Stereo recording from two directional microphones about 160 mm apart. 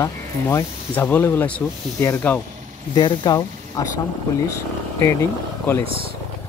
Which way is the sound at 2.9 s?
30° left (ahead or behind).